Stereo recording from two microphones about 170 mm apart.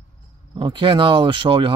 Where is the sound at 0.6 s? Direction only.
30° right (ahead or behind).